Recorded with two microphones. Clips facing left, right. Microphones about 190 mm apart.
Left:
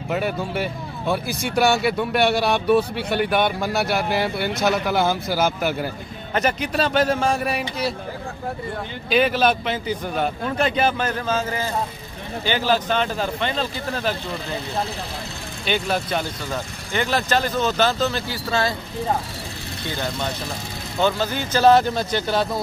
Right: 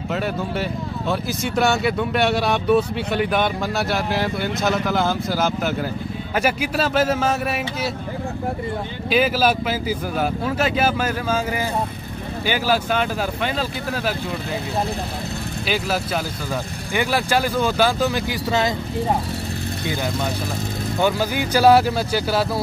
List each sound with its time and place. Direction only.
0.1 s speech: 10° left (ahead or behind)
9.1 s speech: 5° right (ahead or behind)
15.6 s speech: 5° right (ahead or behind)
21.0 s speech: 10° right (ahead or behind)